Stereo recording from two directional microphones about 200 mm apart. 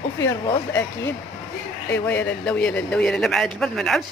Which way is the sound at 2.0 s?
5° left (ahead or behind).